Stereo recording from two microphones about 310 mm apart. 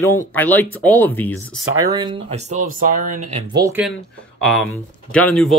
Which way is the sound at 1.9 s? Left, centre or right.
Centre.